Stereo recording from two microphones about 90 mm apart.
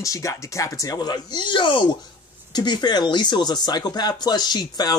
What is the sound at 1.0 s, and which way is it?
Speech, 50° left (ahead or behind).